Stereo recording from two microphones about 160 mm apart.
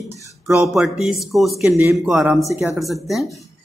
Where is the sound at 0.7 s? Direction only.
Centre (ahead or behind).